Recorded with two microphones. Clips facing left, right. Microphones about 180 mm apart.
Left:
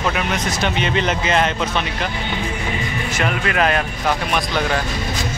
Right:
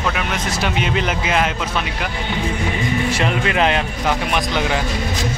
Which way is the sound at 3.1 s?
25° right (ahead or behind).